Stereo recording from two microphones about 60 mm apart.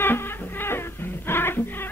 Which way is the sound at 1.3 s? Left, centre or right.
Left.